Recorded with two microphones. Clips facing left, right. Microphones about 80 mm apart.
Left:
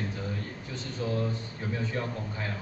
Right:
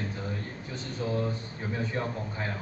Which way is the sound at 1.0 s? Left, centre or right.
Centre.